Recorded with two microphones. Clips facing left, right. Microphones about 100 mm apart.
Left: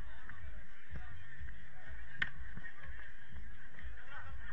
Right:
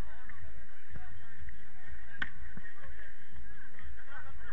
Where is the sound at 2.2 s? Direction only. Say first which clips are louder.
Right 1 dB; 30° right (ahead or behind).